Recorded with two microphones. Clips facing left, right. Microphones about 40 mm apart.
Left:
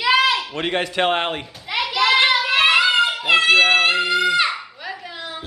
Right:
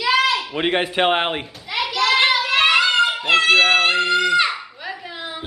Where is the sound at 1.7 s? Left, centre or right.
Centre.